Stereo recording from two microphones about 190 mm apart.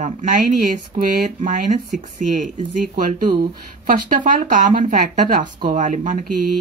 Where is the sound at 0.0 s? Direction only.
40° right (ahead or behind).